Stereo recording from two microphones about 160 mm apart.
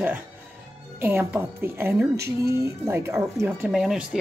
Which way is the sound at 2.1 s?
90° right.